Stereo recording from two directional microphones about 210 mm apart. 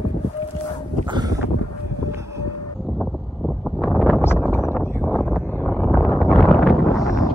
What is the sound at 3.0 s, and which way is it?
Wind noise, centre (ahead or behind).